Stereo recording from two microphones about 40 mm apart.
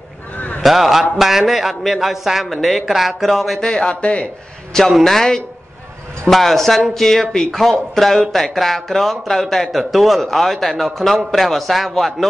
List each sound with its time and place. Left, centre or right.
0.6 s a man's voice: centre
3.6 s speech: left
3.9 s speech: left
5.0 s a man's voice: centre